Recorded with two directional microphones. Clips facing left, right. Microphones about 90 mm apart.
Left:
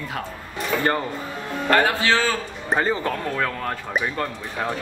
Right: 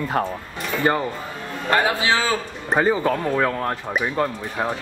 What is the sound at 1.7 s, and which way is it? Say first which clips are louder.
Speech: even; 15° right (ahead or behind).